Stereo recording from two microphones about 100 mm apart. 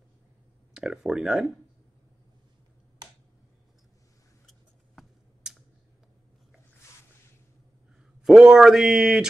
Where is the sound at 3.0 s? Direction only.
45° right (ahead or behind).